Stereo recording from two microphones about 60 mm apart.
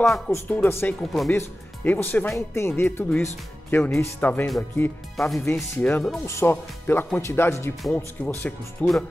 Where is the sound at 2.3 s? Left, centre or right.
Left.